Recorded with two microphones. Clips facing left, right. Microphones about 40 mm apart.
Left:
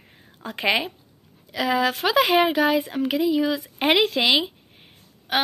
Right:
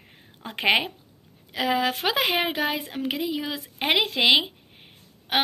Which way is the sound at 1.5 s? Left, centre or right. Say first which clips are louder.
Left 2 dB; centre.